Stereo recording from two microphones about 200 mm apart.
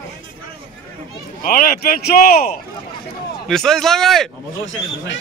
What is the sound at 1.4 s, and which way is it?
A man's voice, 45° left (ahead or behind).